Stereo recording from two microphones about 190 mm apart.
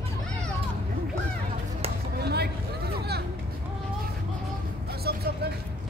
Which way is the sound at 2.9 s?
55° right (ahead or behind).